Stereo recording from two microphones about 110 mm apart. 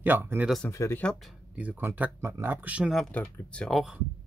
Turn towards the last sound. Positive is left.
turn(degrees=-5)  # may be behind; listen again after turning